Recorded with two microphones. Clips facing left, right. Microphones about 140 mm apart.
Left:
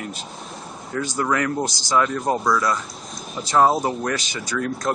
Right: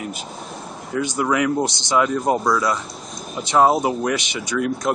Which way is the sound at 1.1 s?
10° right (ahead or behind).